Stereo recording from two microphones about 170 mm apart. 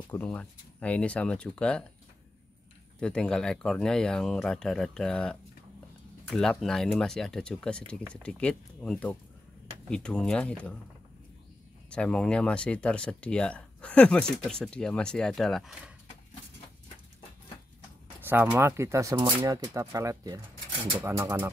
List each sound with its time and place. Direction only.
0.1 s speech: 10° left (ahead or behind)
3.0 s speech: 5° left (ahead or behind)
11.9 s speech: 5° left (ahead or behind)
18.2 s speech: 10° right (ahead or behind)